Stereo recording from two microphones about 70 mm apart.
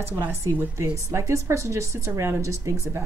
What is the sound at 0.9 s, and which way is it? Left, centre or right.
Speech, right.